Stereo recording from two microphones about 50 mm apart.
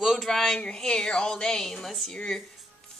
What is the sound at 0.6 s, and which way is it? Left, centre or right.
A woman's voice, centre.